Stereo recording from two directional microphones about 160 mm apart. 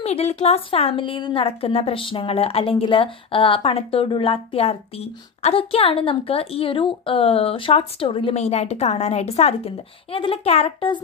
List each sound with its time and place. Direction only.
0.0 s a woman's voice: 40° left (ahead or behind)